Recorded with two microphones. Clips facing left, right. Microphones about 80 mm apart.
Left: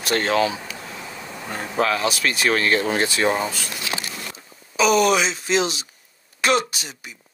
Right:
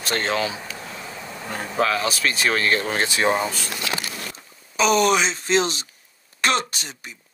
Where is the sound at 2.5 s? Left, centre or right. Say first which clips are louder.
Left 2 dB; right.